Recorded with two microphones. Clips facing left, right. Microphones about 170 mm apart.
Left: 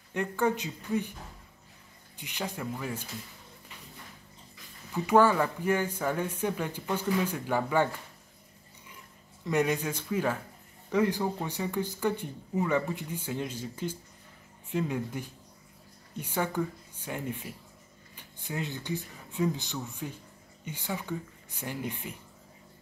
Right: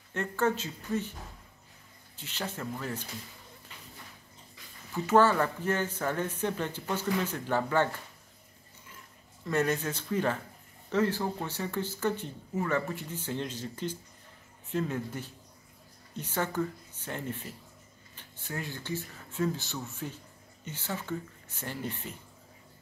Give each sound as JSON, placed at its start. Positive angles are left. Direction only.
{"t": 0.1, "sound": "speech", "side_deg": 15}
{"t": 2.1, "sound": "speech", "side_deg": 15}
{"t": 4.9, "sound": "speech", "side_deg": 15}
{"t": 9.5, "sound": "speech", "side_deg": 15}